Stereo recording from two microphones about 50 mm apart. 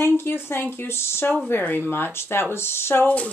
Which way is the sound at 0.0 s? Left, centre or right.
Left.